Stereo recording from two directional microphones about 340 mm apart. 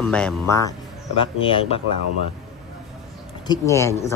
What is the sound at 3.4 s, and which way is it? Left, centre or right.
Speech, centre.